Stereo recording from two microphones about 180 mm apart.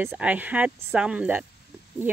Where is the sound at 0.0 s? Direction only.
10° right (ahead or behind).